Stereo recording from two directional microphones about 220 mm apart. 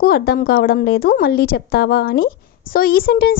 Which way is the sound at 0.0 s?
45° left (ahead or behind).